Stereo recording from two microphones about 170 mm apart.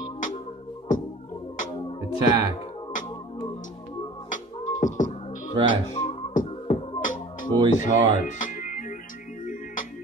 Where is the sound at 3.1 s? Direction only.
30° left (ahead or behind).